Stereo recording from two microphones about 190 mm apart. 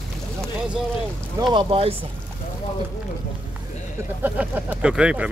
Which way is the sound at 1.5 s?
30° right (ahead or behind).